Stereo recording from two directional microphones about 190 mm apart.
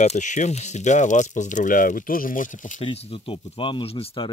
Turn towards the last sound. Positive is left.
turn(degrees=25)  # may be behind; listen again after turning